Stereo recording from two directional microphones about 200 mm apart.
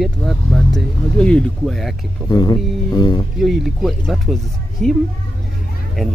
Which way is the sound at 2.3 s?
20° left (ahead or behind).